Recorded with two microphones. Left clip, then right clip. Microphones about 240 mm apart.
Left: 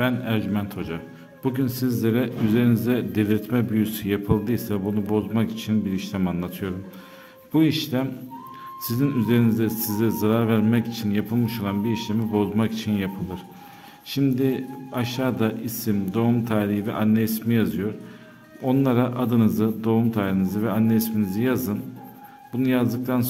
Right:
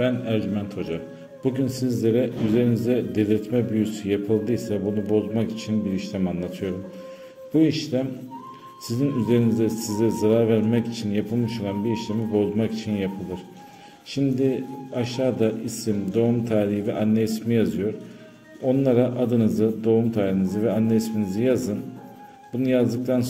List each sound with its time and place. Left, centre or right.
0.0 s a man's voice: left
14.1 s a man's voice: left